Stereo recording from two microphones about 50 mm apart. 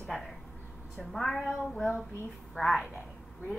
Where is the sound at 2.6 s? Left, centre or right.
Left.